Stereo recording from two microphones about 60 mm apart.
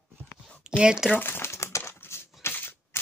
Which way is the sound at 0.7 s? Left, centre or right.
Centre.